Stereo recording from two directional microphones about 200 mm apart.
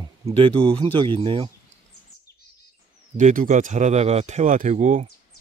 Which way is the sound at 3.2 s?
40° right (ahead or behind).